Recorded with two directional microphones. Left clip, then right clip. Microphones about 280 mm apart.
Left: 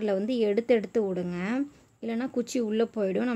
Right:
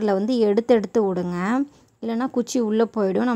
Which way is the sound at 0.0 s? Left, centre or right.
Centre.